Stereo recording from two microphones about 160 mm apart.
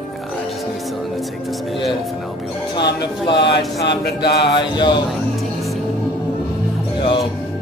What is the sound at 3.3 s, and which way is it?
Speech, 90° left.